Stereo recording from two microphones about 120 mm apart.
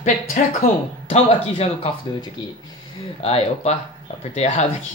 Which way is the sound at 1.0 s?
65° left (ahead or behind).